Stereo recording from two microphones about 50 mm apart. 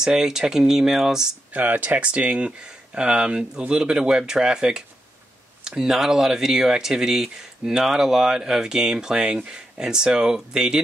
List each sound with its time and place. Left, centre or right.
0.0 s speech: centre
1.5 s speech: right; by 9.2 s centre
9.2 s speech: right